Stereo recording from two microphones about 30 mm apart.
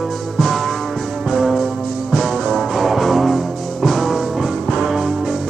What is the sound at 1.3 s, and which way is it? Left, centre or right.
Music, centre.